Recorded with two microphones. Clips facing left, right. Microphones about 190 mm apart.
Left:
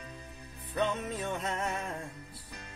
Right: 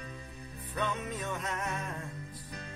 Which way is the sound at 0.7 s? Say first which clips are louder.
Left 3 dB; 30° left (ahead or behind).